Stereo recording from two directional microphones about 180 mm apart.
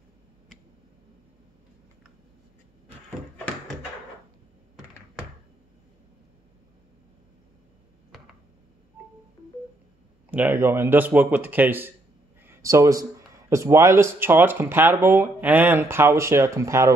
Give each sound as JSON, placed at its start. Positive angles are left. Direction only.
{"t": 10.3, "sound": "a man's voice", "side_deg": -10}